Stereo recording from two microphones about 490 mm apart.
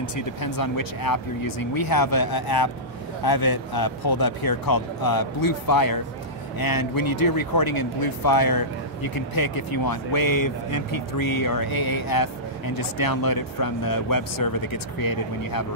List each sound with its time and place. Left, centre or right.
0.0 s speech: left